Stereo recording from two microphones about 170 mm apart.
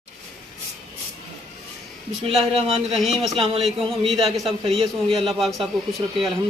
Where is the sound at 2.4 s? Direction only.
35° right (ahead or behind).